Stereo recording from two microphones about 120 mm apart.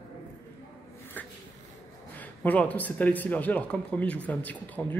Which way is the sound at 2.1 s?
15° left (ahead or behind).